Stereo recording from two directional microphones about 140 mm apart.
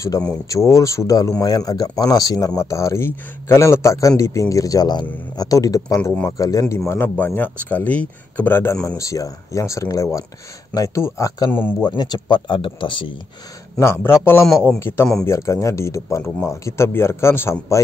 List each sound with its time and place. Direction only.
0.1 s speech: 25° left (ahead or behind)
13.7 s speech: 20° left (ahead or behind)